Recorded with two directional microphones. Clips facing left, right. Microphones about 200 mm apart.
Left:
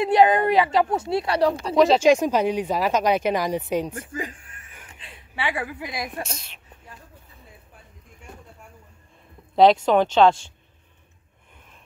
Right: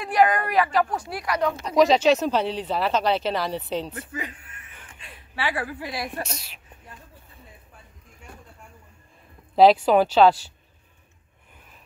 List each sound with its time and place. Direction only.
0.0 s a woman's voice: 25° left (ahead or behind)
1.8 s a woman's voice: centre (ahead or behind)
2.0 s a woman's voice: 10° left (ahead or behind)
4.1 s a woman's voice: 30° left (ahead or behind)
6.2 s a woman's voice: 5° right (ahead or behind)
9.6 s speech: 5° right (ahead or behind)